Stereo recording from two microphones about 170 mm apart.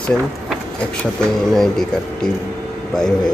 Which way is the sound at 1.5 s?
Centre (ahead or behind).